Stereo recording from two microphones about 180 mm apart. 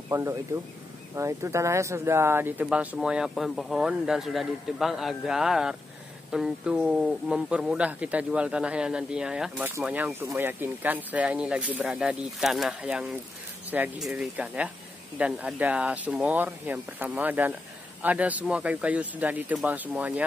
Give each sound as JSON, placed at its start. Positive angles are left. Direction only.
{"t": 0.1, "sound": "speech", "side_deg": -15}